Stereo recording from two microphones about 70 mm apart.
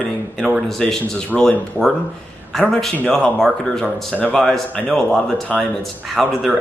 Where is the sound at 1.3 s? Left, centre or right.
Centre.